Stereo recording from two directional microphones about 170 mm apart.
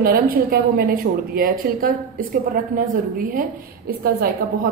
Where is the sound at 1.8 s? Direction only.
55° right (ahead or behind).